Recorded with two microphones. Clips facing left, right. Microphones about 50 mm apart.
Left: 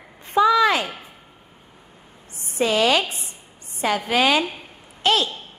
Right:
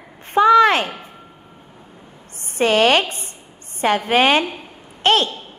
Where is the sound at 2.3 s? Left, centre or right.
Right.